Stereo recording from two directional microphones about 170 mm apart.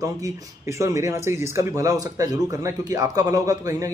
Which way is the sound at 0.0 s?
20° right (ahead or behind).